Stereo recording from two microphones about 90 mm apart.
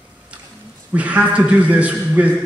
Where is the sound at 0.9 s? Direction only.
15° right (ahead or behind).